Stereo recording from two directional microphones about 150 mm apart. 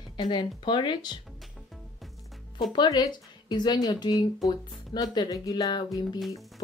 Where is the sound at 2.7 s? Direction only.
30° left (ahead or behind).